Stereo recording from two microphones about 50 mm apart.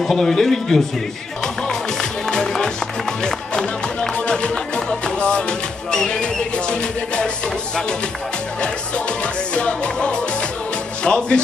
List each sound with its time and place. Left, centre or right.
0.0 s speech: centre
1.7 s music: centre
3.3 s speech: centre
8.5 s music: left